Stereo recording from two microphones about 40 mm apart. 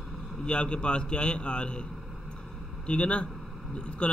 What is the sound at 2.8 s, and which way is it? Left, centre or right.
A man's voice, left.